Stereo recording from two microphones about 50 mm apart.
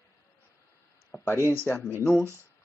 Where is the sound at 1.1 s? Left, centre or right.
Left.